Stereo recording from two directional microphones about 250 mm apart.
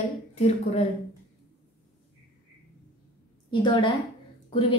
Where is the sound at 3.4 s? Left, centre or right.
Centre.